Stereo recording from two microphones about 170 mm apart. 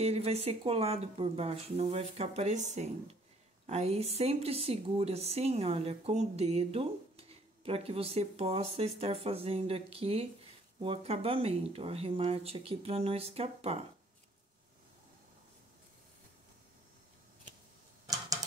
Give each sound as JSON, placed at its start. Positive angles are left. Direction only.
{"t": 0.0, "sound": "a woman's voice", "side_deg": -35}